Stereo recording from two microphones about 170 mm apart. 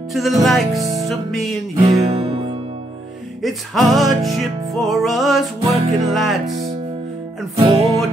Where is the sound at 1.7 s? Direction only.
25° right (ahead or behind).